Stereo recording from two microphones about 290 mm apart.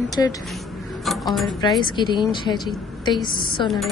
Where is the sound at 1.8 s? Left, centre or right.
Centre.